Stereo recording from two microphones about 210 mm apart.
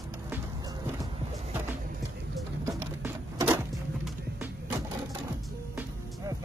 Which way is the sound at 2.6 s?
10° right (ahead or behind).